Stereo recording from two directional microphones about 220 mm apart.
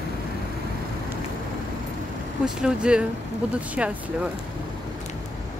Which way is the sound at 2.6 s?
5° right (ahead or behind).